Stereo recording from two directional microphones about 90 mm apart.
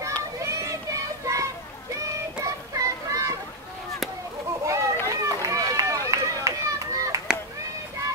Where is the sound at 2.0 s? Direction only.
35° right (ahead or behind).